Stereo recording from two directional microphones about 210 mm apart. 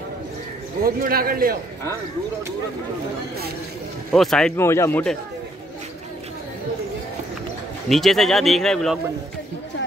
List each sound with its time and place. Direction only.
0.8 s speech: 45° right (ahead or behind)
4.1 s speech: centre (ahead or behind)
7.9 s speech: centre (ahead or behind)